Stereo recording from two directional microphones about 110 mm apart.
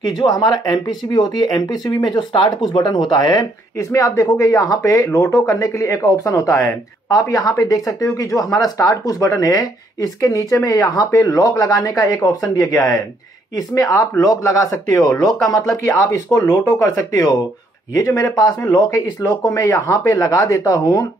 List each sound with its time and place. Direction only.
0.0 s speech: 40° left (ahead or behind)